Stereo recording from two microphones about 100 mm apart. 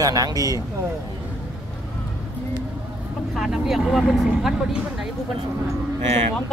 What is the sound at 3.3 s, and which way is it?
Speech, 5° right (ahead or behind).